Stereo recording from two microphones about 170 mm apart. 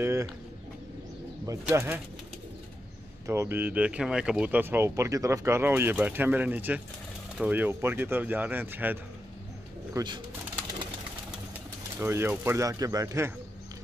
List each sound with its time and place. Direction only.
0.0 s bird: 15° right (ahead or behind)
1.7 s speech: 10° right (ahead or behind)
3.3 s speech: 15° right (ahead or behind)
9.9 s speech: 25° right (ahead or behind)
12.0 s speech: 10° right (ahead or behind)